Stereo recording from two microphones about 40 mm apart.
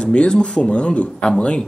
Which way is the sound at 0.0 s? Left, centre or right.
Left.